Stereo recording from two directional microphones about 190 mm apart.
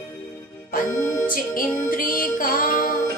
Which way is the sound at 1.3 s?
45° left (ahead or behind).